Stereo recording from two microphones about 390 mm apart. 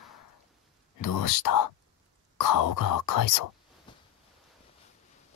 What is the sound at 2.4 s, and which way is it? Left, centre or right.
Speech, left.